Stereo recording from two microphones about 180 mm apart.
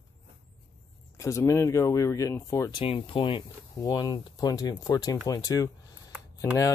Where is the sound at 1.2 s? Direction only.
15° left (ahead or behind).